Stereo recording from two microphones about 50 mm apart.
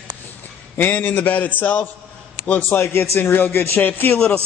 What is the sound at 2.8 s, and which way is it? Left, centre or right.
A man's voice, left.